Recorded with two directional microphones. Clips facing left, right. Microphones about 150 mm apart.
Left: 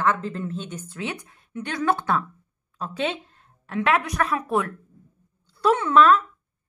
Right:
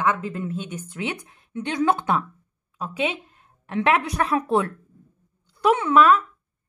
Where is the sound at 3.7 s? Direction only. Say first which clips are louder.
Right 1 dB; 25° right (ahead or behind).